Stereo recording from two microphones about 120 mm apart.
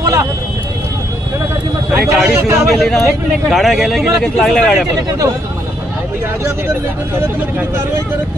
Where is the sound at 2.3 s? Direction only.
20° right (ahead or behind).